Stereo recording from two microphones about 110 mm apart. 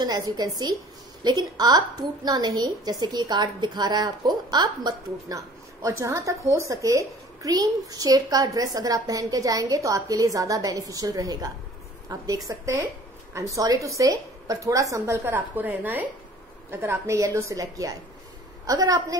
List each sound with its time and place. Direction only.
0.0 s a woman's voice: 40° right (ahead or behind)